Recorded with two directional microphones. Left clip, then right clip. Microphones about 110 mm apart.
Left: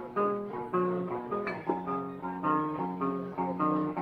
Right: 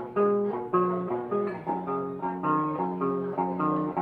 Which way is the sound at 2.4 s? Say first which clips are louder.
Right 2 dB; 40° right (ahead or behind).